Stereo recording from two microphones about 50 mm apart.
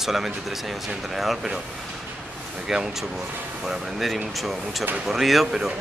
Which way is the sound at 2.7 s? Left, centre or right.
Centre.